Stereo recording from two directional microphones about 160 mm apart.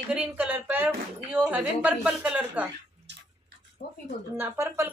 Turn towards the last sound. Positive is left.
turn(degrees=-15)  # may be behind; listen again after turning